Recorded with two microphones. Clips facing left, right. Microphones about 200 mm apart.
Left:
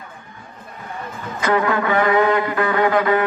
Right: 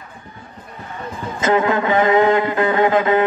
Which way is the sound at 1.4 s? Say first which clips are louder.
Right 2 dB; 25° right (ahead or behind).